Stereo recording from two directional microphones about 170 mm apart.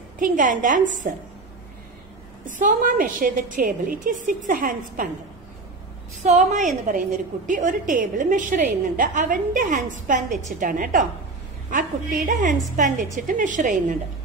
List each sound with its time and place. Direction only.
0.2 s a woman's voice: 50° right (ahead or behind)
2.4 s a woman's voice: 55° right (ahead or behind)
6.2 s a woman's voice: 45° right (ahead or behind)